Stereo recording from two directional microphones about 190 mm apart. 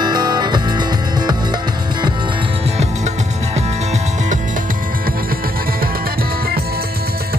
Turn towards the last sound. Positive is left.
turn(degrees=-55)  # may be behind; listen again after turning